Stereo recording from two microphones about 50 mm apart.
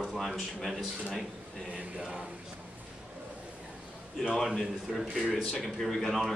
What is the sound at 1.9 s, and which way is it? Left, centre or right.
Speech, centre.